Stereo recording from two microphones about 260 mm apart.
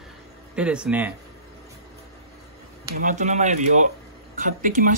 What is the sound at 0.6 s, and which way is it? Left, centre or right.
Speech, centre.